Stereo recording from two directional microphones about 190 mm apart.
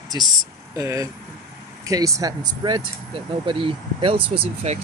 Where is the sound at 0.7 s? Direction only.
15° right (ahead or behind).